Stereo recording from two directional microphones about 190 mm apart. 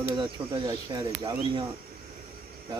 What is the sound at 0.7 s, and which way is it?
Speech, 20° right (ahead or behind).